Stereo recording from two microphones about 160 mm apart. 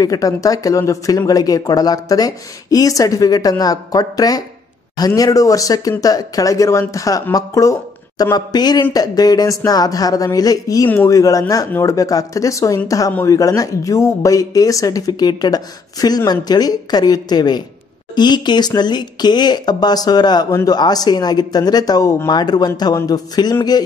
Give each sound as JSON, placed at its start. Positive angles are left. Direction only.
{"t": 0.0, "sound": "speech", "side_deg": 20}